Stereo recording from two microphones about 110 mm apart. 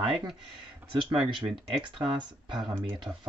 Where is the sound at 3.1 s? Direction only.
10° right (ahead or behind).